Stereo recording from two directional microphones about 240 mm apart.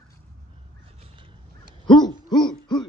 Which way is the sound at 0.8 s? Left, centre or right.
Right.